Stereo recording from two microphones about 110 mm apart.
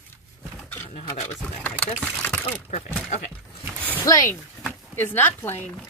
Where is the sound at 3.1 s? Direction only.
90° left.